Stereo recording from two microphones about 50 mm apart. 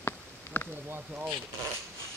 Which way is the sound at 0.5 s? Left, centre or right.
Left.